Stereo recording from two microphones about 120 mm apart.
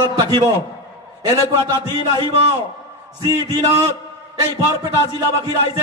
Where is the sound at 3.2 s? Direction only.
30° right (ahead or behind).